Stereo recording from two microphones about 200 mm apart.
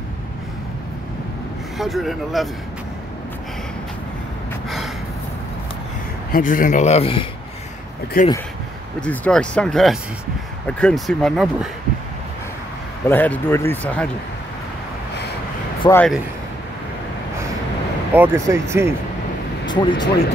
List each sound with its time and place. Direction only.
1.8 s speech: centre (ahead or behind)
4.6 s gasp: centre (ahead or behind)
6.3 s speech: 45° left (ahead or behind)
8.2 s speech: 45° left (ahead or behind)
9.0 s speech: 5° left (ahead or behind)
13.1 s speech: 10° left (ahead or behind)
15.8 s speech: 20° left (ahead or behind)
18.1 s speech: 10° right (ahead or behind)
19.6 s speech: 20° left (ahead or behind)